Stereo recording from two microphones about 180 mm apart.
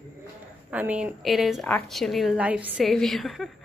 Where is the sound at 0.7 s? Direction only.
10° right (ahead or behind).